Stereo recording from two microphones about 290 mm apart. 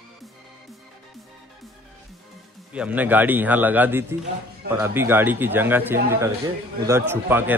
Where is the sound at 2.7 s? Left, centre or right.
Centre.